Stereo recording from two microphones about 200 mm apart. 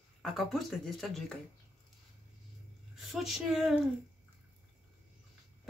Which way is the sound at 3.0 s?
Centre (ahead or behind).